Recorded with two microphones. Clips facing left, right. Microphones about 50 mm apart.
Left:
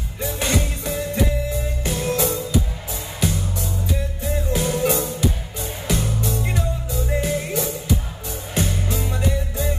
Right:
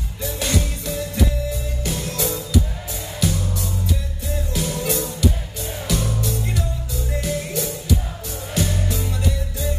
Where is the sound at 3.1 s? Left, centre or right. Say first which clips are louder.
Right 1 dB; left.